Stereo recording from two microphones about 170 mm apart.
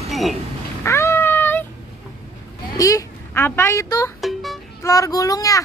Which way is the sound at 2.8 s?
20° left (ahead or behind).